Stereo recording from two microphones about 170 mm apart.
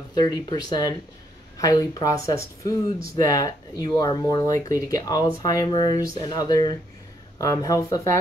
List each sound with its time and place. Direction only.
0.1 s speech: 25° left (ahead or behind)